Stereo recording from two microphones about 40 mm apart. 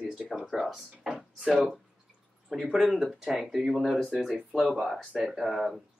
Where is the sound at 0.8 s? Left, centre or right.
Centre.